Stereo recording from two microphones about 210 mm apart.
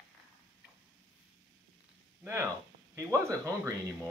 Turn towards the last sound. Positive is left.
turn(degrees=-15)  # may be behind; listen again after turning